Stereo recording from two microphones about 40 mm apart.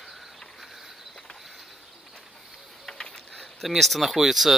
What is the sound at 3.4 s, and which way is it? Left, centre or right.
Speech, centre.